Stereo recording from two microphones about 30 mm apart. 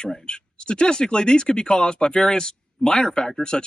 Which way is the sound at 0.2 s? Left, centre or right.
Left.